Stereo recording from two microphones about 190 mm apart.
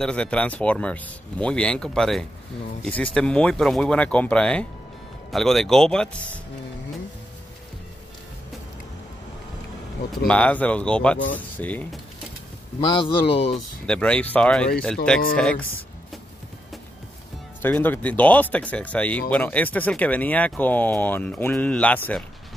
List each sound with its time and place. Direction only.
0.0 s speech: 5° left (ahead or behind)
10.2 s speech: 5° left (ahead or behind)
12.8 s speech: 25° left (ahead or behind)
13.8 s speech: 5° left (ahead or behind)
17.6 s speech: 10° left (ahead or behind)